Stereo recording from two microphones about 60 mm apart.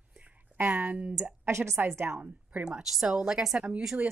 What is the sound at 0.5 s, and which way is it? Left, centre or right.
Speech, right.